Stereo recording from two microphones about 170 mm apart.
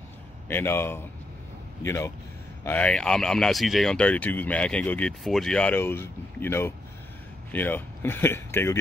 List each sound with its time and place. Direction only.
0.5 s speech: 15° left (ahead or behind)